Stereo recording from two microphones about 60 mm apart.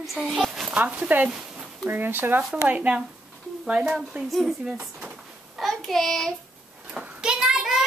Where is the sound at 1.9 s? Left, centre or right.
Right; by 4.2 s centre.